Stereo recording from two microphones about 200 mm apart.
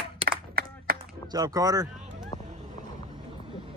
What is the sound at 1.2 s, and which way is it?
Speech, 20° right (ahead or behind).